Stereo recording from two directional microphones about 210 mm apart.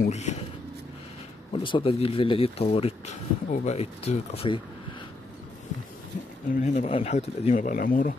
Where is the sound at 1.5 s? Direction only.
25° left (ahead or behind).